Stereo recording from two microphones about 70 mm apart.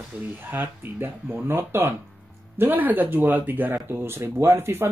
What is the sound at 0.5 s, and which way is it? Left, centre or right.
Speech, right.